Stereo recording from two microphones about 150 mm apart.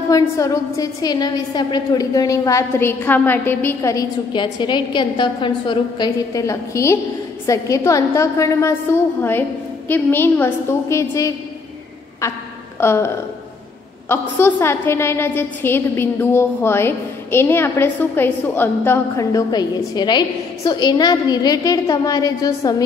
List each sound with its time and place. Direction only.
0.1 s a woman's voice: 20° left (ahead or behind)
12.8 s a woman's voice: 15° left (ahead or behind)